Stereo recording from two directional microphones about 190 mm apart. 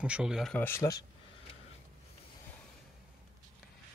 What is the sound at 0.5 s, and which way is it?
Speech, 10° left (ahead or behind).